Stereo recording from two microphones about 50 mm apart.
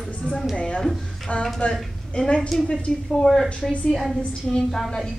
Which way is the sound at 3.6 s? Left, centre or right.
Centre.